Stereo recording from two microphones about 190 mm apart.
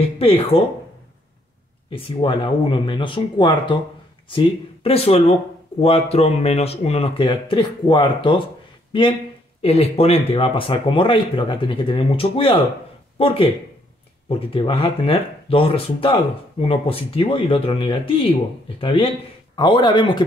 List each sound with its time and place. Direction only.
0.2 s speech: 30° left (ahead or behind)
1.9 s speech: 30° left (ahead or behind)